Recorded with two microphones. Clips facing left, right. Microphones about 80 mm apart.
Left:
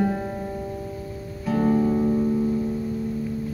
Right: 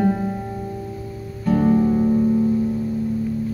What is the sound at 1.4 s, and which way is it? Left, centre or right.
Music, centre.